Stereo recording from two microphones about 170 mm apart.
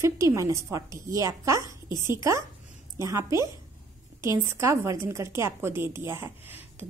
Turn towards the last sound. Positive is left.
turn(degrees=-15)  # may be behind; listen again after turning